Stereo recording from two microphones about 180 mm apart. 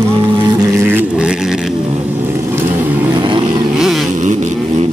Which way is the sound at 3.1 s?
25° right (ahead or behind).